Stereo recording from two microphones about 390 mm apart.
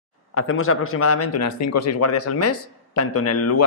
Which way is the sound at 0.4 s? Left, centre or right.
Left.